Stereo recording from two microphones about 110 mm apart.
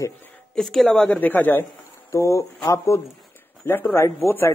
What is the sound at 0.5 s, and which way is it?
A woman's voice, 5° left (ahead or behind).